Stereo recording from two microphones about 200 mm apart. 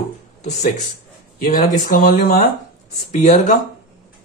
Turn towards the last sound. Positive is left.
turn(degrees=35)  # may be behind; listen again after turning